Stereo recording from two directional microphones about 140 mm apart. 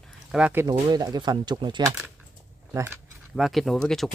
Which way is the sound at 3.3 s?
Centre (ahead or behind).